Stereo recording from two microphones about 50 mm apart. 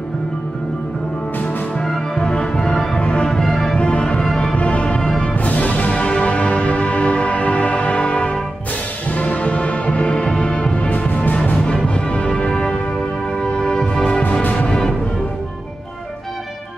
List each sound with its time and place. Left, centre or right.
1.8 s music: centre
3.7 s music: left
5.3 s music: left
10.9 s music: left
11.6 s music: left